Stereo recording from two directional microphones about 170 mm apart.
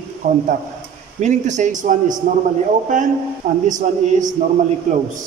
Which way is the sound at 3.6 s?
45° right (ahead or behind).